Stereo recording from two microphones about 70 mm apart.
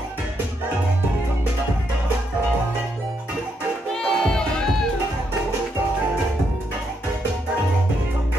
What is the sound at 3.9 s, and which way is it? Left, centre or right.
Music, centre.